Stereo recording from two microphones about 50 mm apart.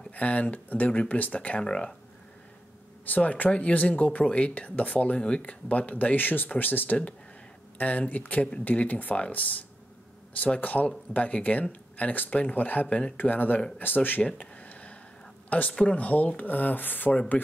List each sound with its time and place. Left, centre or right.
0.1 s speech: left
1.6 s speech: centre
3.1 s speech: left
7.7 s a sound: left
8.1 s speech: left
14.2 s a sound: left
15.8 s speech: left